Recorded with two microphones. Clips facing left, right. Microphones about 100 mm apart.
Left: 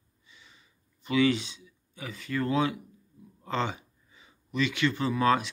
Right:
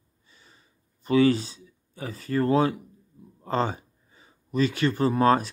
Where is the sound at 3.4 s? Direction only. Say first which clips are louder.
Right 4 dB; 40° right (ahead or behind).